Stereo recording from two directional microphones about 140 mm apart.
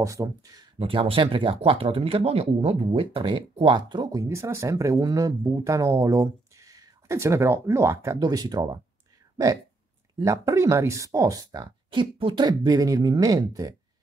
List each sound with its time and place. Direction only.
0.0 s speech: 25° right (ahead or behind)
0.7 s speech: 40° right (ahead or behind)
10.2 s speech: 20° right (ahead or behind)